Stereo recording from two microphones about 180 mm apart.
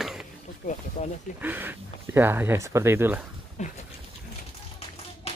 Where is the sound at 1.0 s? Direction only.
40° left (ahead or behind).